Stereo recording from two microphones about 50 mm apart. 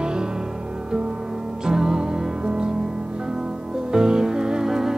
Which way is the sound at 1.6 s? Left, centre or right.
Centre.